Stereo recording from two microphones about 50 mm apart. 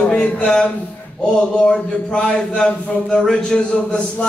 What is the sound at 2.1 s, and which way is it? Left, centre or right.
A man's voice, centre.